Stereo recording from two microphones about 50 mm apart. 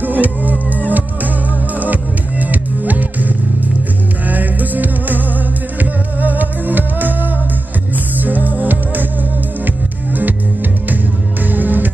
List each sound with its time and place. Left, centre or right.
0.0 s music: right
1.8 s music: right
11.4 s music: right